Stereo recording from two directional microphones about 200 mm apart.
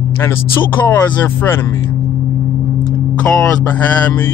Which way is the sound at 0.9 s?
10° left (ahead or behind).